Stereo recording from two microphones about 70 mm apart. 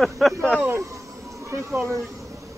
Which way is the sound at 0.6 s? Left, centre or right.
Right.